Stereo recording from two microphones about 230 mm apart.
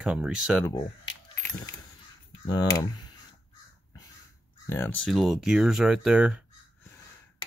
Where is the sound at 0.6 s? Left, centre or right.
Centre.